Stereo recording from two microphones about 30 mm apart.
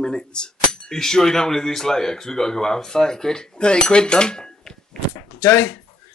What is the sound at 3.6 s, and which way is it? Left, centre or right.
Speech, left.